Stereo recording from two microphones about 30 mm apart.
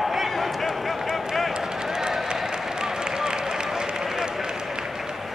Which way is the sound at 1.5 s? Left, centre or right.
Right.